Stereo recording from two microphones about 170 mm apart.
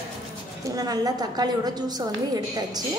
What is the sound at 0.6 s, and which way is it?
A woman's voice, 20° right (ahead or behind).